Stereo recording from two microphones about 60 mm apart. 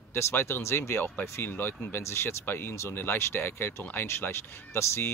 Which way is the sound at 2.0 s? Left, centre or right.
Left.